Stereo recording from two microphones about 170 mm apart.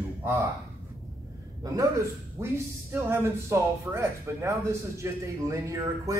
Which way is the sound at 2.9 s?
15° right (ahead or behind).